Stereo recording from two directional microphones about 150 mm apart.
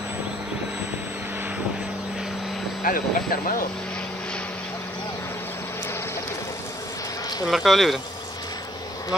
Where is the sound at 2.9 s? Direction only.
70° left (ahead or behind).